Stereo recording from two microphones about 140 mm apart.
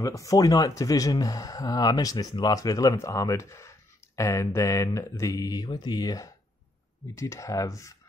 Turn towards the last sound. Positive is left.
turn(degrees=20)  # may be behind; listen again after turning